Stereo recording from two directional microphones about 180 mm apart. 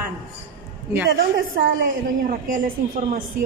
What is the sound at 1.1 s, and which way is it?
A woman's voice, 55° right (ahead or behind).